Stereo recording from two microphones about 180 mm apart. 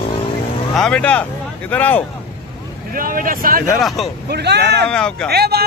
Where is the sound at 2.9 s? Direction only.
50° right (ahead or behind).